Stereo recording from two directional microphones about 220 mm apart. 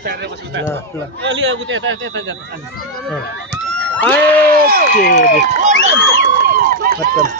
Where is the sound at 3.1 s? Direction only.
5° left (ahead or behind).